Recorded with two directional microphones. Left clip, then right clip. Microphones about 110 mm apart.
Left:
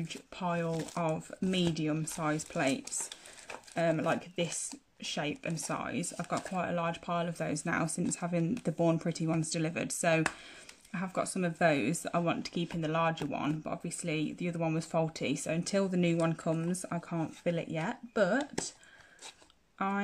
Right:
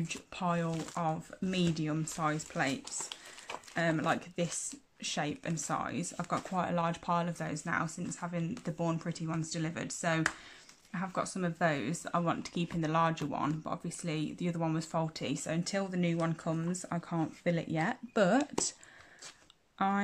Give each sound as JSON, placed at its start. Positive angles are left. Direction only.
{"t": 0.1, "sound": "speech", "side_deg": 10}